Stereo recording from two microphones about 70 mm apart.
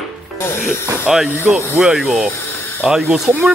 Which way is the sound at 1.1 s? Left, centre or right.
Centre.